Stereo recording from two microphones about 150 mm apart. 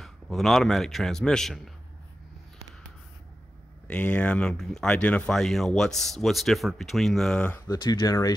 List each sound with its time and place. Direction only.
0.0 s speech: centre (ahead or behind)
3.8 s speech: 10° left (ahead or behind); by 8.4 s 25° left (ahead or behind)